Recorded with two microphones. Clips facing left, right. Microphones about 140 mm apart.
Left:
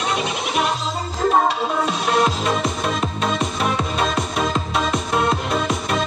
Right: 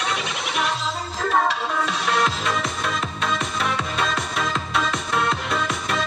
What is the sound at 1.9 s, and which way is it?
Music, 20° left (ahead or behind).